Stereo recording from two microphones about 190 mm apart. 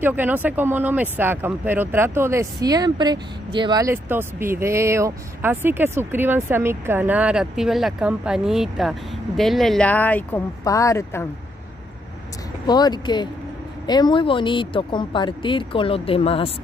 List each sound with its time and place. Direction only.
0.0 s speech: 10° right (ahead or behind); by 11.2 s 15° left (ahead or behind)
12.6 s speech: 20° left (ahead or behind)